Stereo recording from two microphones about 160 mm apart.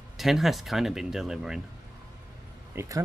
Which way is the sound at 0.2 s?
Centre (ahead or behind).